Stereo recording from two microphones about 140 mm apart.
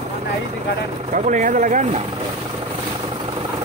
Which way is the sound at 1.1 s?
65° right (ahead or behind).